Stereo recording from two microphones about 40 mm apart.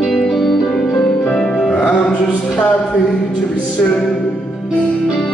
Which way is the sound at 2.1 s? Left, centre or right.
Left.